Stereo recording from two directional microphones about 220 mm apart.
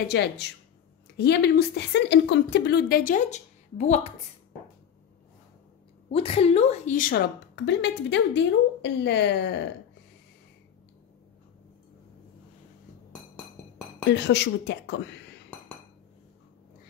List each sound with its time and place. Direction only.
0.1 s a woman's voice: 50° left (ahead or behind); by 4.1 s 30° left (ahead or behind)
6.1 s a woman's voice: 25° left (ahead or behind); by 9.4 s 50° left (ahead or behind)
14.0 s a woman's voice: 55° left (ahead or behind)